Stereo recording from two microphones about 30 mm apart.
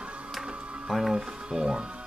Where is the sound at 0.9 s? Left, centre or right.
Centre.